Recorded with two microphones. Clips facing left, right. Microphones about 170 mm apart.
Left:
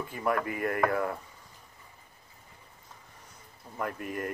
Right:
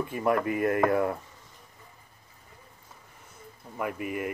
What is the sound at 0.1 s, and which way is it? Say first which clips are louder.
Speech: right 3 dB; 25° right (ahead or behind).